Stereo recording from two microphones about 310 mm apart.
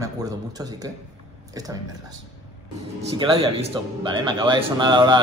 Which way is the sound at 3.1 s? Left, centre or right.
Centre.